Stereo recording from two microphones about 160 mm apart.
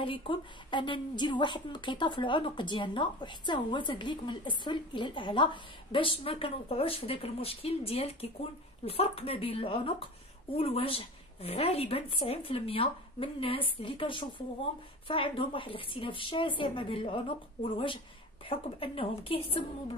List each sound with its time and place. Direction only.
0.0 s a woman's voice: 30° left (ahead or behind)